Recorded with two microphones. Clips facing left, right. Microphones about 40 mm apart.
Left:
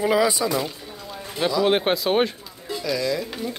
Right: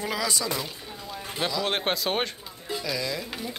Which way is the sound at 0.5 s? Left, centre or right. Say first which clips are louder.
Left 6 dB; centre.